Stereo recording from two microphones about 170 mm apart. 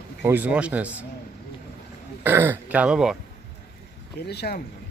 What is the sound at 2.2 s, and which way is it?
Speech, 10° right (ahead or behind).